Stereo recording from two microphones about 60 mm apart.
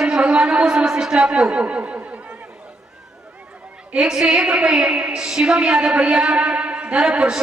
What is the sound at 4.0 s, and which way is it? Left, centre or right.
A woman's voice, centre.